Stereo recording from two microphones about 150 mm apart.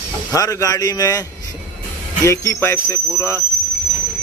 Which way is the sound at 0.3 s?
20° left (ahead or behind).